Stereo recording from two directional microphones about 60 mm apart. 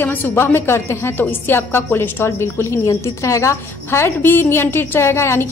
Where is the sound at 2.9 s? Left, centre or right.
Left.